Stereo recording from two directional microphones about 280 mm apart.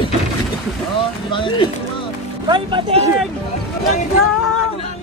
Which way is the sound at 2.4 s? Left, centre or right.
Centre.